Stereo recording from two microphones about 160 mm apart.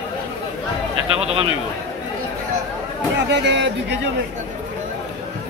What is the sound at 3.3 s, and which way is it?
Speech, 90° right.